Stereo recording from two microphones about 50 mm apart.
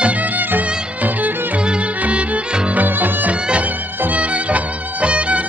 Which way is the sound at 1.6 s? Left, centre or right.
Right.